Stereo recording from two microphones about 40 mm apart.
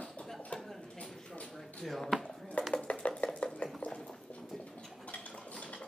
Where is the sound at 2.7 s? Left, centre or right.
Left.